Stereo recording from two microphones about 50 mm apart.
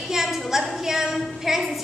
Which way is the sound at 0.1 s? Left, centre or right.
Centre.